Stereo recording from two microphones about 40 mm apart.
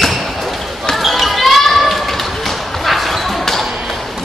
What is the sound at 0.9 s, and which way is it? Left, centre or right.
Basketball bounce, centre.